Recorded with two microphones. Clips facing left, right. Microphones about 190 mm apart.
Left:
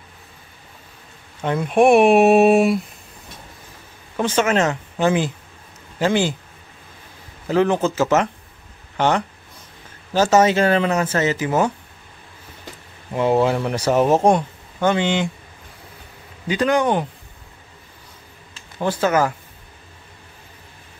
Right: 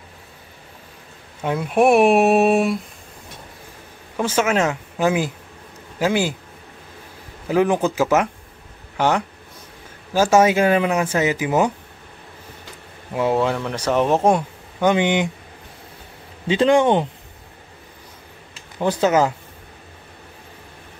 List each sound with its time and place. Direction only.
1.4 s speech: 5° right (ahead or behind)
4.2 s speech: 5° right (ahead or behind)
7.4 s speech: 10° right (ahead or behind)
13.1 s speech: centre (ahead or behind)
14.2 s a sound: 5° right (ahead or behind)
14.9 s speech: 15° right (ahead or behind)
16.4 s speech: 25° right (ahead or behind)
18.8 s speech: 20° right (ahead or behind)